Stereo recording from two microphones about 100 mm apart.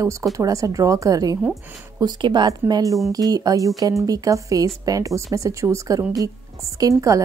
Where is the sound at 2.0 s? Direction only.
45° right (ahead or behind).